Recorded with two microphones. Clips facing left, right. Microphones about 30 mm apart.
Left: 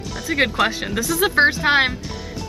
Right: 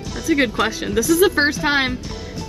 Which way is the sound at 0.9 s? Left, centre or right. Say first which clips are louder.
Right 4 dB; centre.